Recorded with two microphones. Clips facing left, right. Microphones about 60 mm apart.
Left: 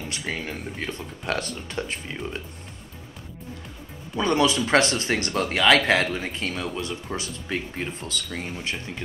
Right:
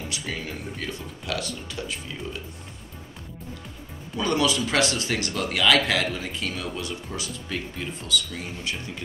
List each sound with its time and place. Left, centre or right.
0.1 s speech: left
0.8 s speech: left
4.2 s speech: left